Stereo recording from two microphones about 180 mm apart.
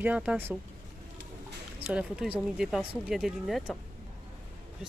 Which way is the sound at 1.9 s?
5° right (ahead or behind).